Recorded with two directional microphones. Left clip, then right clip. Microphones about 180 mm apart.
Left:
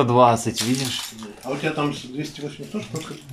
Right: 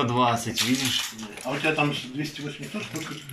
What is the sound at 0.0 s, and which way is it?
Speech, 20° left (ahead or behind).